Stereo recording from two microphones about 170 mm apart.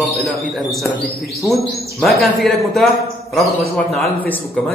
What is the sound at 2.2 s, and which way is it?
Speech, centre (ahead or behind).